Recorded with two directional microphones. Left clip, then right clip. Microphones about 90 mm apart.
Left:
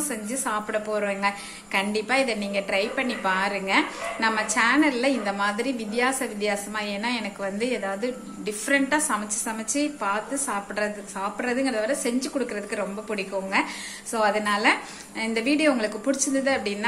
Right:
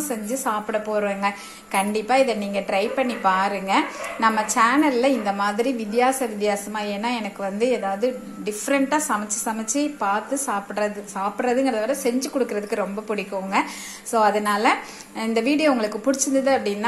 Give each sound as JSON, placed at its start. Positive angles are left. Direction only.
{"t": 0.3, "sound": "a woman's voice", "side_deg": -30}
{"t": 12.4, "sound": "a woman's voice", "side_deg": -45}